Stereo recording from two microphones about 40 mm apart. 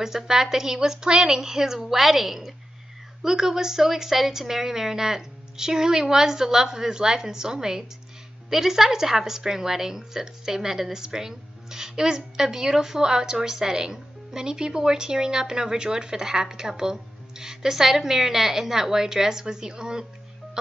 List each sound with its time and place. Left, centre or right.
0.0 s a woman's voice: centre